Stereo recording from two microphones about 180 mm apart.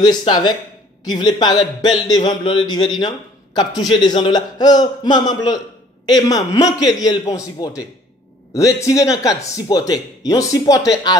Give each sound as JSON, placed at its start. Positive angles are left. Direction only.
{"t": 0.0, "sound": "speech", "side_deg": 25}